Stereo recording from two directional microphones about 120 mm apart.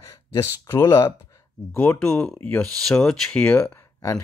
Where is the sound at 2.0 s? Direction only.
5° left (ahead or behind).